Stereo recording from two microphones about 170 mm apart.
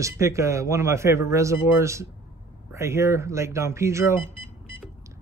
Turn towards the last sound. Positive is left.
turn(degrees=-15)  # may be behind; listen again after turning